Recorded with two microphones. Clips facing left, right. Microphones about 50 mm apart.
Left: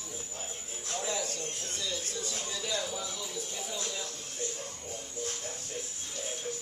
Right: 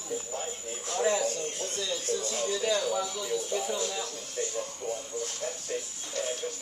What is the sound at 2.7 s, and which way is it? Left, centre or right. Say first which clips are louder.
Speech: right 6 dB; right.